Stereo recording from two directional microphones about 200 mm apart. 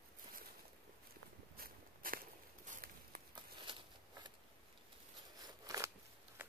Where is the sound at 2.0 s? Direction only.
45° right (ahead or behind).